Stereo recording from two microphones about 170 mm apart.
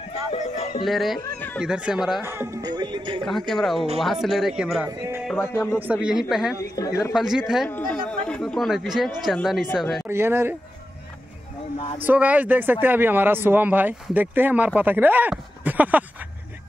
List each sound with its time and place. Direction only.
0.3 s music: 35° left (ahead or behind)
0.8 s speech: centre (ahead or behind)
2.2 s speech: 15° right (ahead or behind)
3.3 s speech: centre (ahead or behind)
4.8 s music: 15° right (ahead or behind)
5.3 s music: 10° left (ahead or behind)
5.8 s speech: 5° right (ahead or behind)
10.0 s speech: 15° right (ahead or behind)
12.0 s speech: 10° right (ahead or behind)